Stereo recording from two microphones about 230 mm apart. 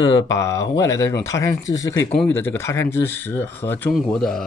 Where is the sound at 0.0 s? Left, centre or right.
Centre.